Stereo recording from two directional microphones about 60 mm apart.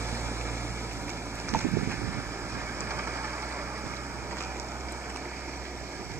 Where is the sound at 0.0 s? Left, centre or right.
Right.